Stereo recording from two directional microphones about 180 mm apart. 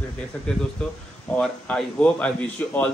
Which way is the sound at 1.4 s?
5° left (ahead or behind).